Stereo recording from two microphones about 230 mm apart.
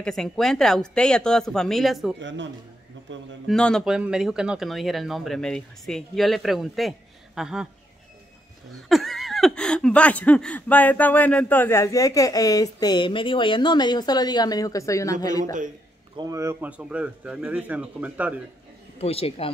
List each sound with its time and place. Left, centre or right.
0.0 s speech: centre
2.1 s a woman's voice: right
3.4 s speech: centre
8.8 s speech: centre
16.2 s speech: centre
18.9 s speech: left